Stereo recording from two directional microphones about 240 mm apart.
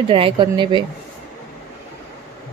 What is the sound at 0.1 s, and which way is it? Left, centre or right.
Speech, right.